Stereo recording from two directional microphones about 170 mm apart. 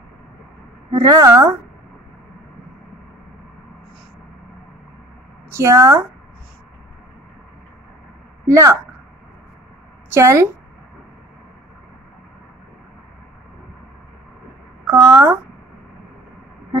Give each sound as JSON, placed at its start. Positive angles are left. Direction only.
{"t": 0.9, "sound": "a woman's voice", "side_deg": -20}
{"t": 5.5, "sound": "speech", "side_deg": -15}
{"t": 8.5, "sound": "speech", "side_deg": -20}
{"t": 10.0, "sound": "a woman's voice", "side_deg": -15}
{"t": 14.9, "sound": "a sound", "side_deg": -15}